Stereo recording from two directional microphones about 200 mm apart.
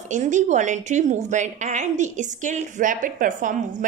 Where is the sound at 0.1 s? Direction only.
35° right (ahead or behind).